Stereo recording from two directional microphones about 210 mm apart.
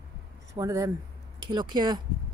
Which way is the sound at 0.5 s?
15° right (ahead or behind).